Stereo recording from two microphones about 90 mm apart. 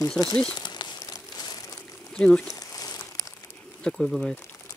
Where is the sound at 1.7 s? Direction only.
10° left (ahead or behind).